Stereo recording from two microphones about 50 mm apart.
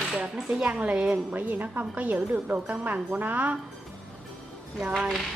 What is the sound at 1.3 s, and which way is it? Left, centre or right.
Speech, right.